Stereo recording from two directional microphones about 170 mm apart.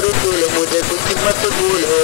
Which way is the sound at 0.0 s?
40° left (ahead or behind).